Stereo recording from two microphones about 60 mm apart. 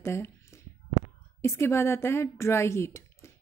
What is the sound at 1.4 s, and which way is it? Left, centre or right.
A woman's voice, left.